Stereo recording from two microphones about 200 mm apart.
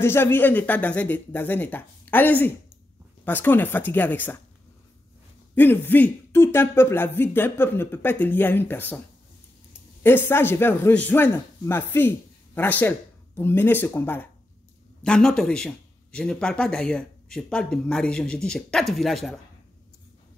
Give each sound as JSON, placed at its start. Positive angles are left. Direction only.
{"t": 0.0, "sound": "speech", "side_deg": 10}
{"t": 5.5, "sound": "speech", "side_deg": 10}
{"t": 10.0, "sound": "a man's voice", "side_deg": 10}